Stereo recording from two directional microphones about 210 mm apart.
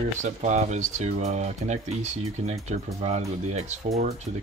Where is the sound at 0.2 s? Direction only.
35° right (ahead or behind).